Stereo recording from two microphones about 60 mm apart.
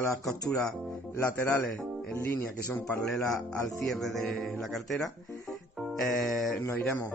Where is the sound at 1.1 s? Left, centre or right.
Left.